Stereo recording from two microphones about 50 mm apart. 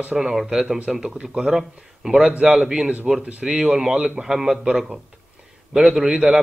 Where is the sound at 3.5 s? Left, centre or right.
Centre.